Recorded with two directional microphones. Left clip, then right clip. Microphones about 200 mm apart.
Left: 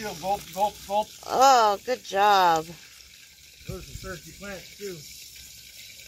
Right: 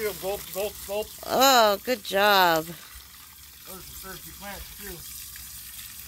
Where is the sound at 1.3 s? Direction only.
55° right (ahead or behind).